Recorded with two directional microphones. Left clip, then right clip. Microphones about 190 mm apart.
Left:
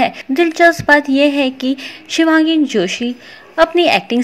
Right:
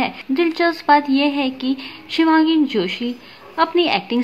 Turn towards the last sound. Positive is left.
turn(degrees=25)  # may be behind; listen again after turning